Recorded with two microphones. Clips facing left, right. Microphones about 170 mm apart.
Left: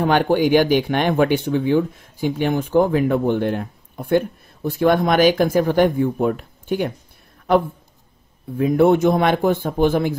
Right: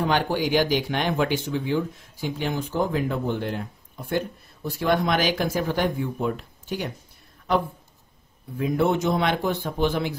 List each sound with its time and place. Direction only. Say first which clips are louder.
0.0 s speech: left 7 dB; 55° left (ahead or behind)
8.5 s speech: left 8 dB; 55° left (ahead or behind)